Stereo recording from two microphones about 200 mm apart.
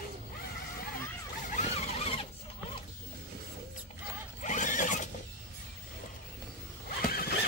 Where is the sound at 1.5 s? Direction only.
35° left (ahead or behind).